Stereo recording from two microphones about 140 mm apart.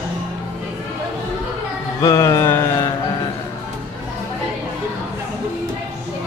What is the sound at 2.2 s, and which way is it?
Mantra, 20° left (ahead or behind).